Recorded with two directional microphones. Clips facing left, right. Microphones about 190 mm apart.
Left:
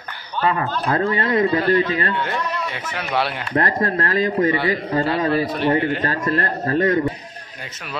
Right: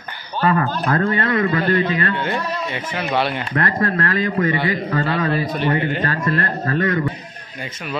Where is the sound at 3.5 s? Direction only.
35° left (ahead or behind).